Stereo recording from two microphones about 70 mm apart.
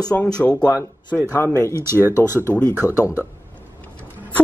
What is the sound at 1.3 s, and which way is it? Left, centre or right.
Speech, left.